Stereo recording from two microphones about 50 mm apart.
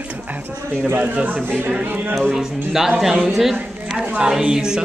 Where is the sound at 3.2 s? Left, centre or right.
Centre.